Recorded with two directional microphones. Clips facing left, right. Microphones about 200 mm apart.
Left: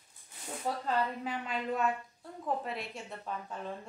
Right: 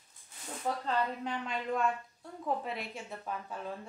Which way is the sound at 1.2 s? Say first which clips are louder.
Even; 5° left (ahead or behind).